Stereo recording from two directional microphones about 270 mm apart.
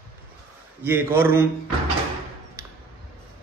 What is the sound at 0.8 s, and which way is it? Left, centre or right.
Speech, centre.